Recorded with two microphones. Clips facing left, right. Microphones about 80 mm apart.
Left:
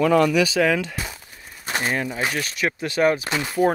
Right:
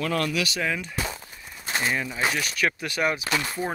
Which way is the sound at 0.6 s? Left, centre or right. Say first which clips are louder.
Left 8 dB; left.